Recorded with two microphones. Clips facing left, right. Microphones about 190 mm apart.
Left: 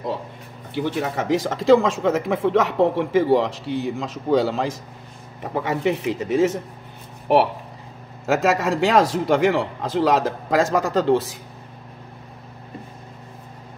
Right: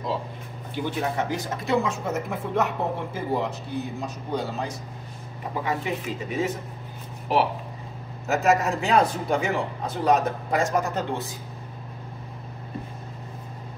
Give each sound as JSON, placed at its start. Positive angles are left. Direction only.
{"t": 0.7, "sound": "speech", "side_deg": 70}
{"t": 5.5, "sound": "speech", "side_deg": 75}
{"t": 7.3, "sound": "speech", "side_deg": 60}
{"t": 8.3, "sound": "speech", "side_deg": 90}